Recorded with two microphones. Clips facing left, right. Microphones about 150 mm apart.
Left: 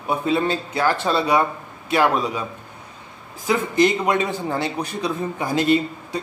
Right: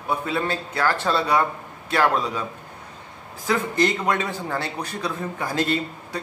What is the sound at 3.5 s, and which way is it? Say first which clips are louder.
A man's voice: left 3 dB; 15° left (ahead or behind).